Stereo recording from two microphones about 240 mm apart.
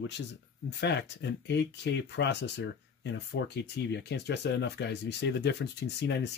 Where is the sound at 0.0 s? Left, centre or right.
Left.